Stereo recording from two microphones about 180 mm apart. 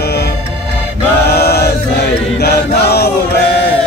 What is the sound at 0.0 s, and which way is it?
Music, 65° left (ahead or behind).